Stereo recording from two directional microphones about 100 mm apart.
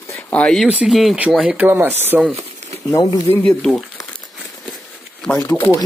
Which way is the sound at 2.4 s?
90° right.